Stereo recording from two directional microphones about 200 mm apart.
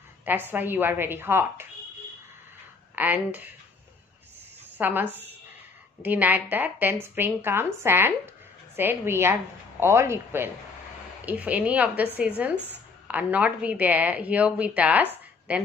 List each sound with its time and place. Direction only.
0.2 s a woman's voice: 10° right (ahead or behind)
3.0 s a woman's voice: 10° right (ahead or behind)
4.7 s a woman's voice: 10° right (ahead or behind)